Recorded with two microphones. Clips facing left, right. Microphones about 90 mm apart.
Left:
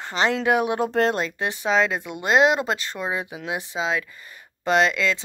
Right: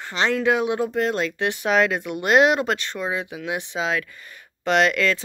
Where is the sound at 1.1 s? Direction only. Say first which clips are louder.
Right 2 dB; 35° left (ahead or behind).